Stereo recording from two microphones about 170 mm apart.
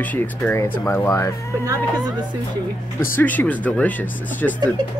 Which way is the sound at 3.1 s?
10° left (ahead or behind).